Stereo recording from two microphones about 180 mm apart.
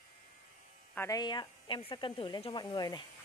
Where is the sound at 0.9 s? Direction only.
20° left (ahead or behind).